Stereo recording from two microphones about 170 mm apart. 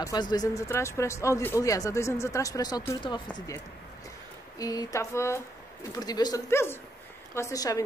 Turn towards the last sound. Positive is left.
turn(degrees=20)  # may be behind; listen again after turning